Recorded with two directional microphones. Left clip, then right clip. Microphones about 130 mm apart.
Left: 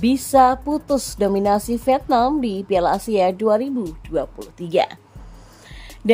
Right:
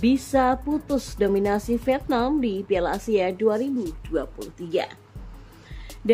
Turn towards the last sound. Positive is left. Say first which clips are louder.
# left 7 dB
turn(degrees=45)  # may be behind; listen again after turning